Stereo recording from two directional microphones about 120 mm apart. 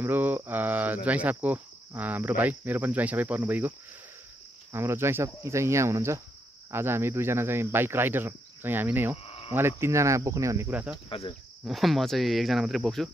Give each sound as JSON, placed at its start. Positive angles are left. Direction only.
{"t": 0.0, "sound": "cricket", "side_deg": -15}
{"t": 4.7, "sound": "speech", "side_deg": -20}
{"t": 9.2, "sound": "cricket", "side_deg": 55}
{"t": 9.5, "sound": "speech", "side_deg": -20}
{"t": 10.7, "sound": "cricket", "side_deg": -15}
{"t": 11.1, "sound": "cricket", "side_deg": 50}
{"t": 11.6, "sound": "speech", "side_deg": 0}